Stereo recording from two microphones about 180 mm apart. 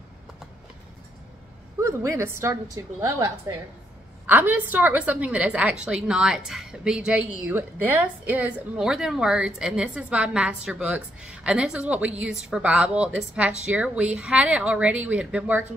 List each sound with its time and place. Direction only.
1.8 s a woman's voice: 15° right (ahead or behind)